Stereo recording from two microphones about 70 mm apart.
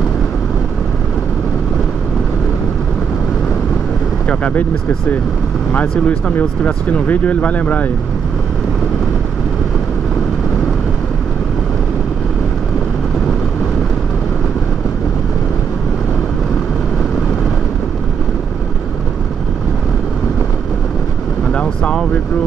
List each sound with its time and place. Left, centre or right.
4.3 s speech: centre
5.7 s speech: left
21.5 s vehicle: centre